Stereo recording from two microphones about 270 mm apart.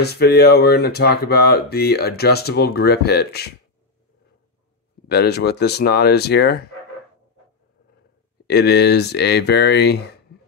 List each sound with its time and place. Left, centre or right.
0.0 s speech: left
5.0 s speech: left
8.5 s speech: left